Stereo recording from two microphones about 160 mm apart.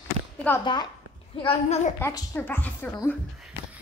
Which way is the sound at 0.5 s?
10° left (ahead or behind).